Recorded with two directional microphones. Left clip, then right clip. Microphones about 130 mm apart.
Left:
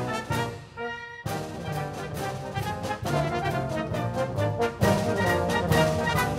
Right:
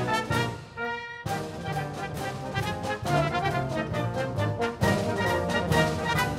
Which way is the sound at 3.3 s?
30° right (ahead or behind).